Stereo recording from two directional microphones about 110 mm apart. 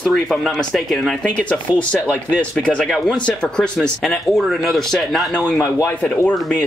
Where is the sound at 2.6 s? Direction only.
10° left (ahead or behind).